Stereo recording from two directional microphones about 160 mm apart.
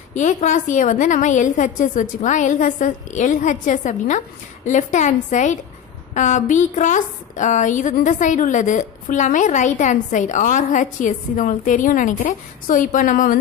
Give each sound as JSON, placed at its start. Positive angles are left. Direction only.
{"t": 0.1, "sound": "a woman's voice", "side_deg": 50}